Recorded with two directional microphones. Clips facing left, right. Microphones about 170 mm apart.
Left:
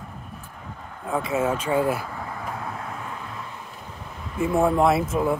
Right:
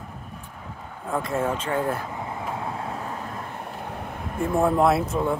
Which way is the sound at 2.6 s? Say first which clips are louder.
Right 2 dB; 30° right (ahead or behind).